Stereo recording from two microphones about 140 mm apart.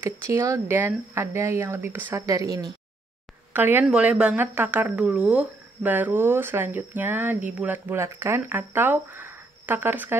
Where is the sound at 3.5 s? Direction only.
15° right (ahead or behind).